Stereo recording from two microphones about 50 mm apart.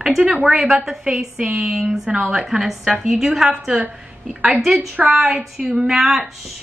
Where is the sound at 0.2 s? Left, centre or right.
Right.